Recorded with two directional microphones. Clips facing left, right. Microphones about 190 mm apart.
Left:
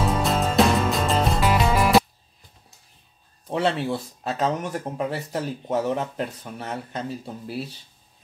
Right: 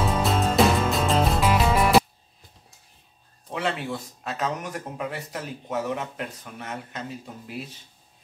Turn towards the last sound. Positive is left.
turn(degrees=35)  # may be behind; listen again after turning